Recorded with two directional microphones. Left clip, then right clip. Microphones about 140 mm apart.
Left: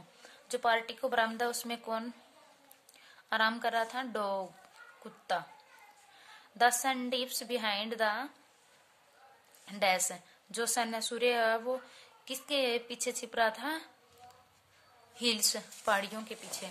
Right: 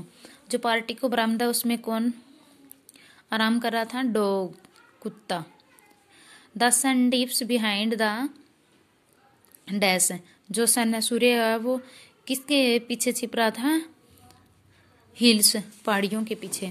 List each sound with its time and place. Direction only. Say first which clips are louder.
0.2 s a woman's voice: right 5 dB; 25° right (ahead or behind)
9.8 s a woman's voice: right 6 dB; 30° right (ahead or behind)
15.1 s a woman's voice: right 10 dB; 30° right (ahead or behind)